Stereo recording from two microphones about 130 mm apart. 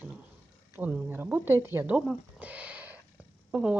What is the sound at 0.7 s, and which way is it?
Speech, 15° right (ahead or behind).